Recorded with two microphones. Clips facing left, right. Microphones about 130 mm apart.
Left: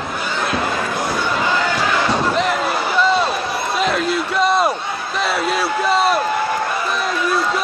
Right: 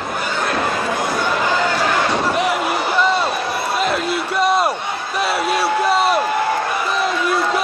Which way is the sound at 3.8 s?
5° right (ahead or behind).